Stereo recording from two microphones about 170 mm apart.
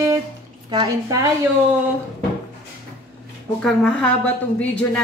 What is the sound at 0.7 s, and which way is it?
Speech, 25° right (ahead or behind).